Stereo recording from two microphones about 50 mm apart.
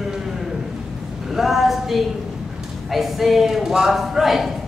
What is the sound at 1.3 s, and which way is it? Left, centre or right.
Speech, centre.